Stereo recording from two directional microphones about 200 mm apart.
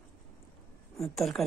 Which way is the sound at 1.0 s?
Centre (ahead or behind).